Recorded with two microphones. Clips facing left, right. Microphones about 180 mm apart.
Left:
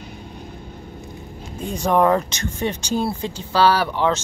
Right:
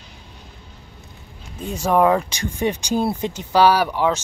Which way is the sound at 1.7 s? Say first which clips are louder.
Even; 5° right (ahead or behind).